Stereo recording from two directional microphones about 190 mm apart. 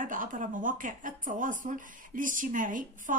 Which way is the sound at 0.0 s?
45° right (ahead or behind).